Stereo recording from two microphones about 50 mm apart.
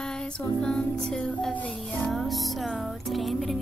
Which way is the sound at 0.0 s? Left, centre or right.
Centre.